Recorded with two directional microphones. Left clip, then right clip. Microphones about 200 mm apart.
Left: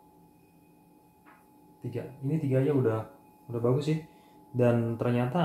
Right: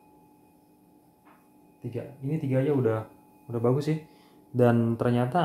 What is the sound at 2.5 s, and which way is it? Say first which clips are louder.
Speech: right 2 dB; 40° right (ahead or behind).